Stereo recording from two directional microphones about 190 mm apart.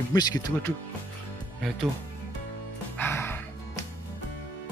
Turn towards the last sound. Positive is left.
turn(degrees=10)  # may be behind; listen again after turning